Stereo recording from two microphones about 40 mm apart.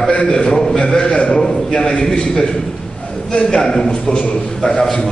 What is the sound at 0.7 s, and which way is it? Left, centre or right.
Speech, left.